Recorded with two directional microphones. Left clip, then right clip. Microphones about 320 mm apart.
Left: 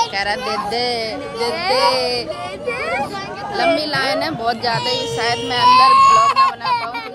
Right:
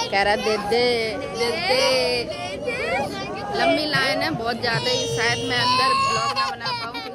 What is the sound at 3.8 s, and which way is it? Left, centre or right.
Speech, centre.